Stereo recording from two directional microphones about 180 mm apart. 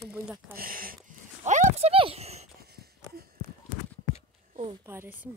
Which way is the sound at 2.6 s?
60° right (ahead or behind).